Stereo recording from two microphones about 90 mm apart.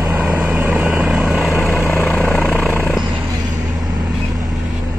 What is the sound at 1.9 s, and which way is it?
Vehicle, 20° left (ahead or behind).